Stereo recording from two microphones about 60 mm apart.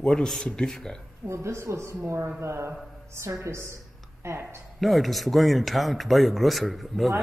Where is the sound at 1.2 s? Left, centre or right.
Right.